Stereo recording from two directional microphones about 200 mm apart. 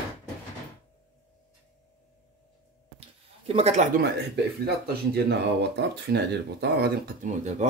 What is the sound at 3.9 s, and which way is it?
Speech, 55° right (ahead or behind).